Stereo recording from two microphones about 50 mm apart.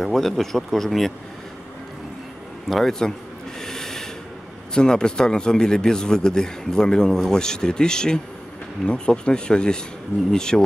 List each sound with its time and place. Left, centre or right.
0.0 s speech: centre
2.7 s speech: centre
3.6 s snort: centre
4.7 s speech: centre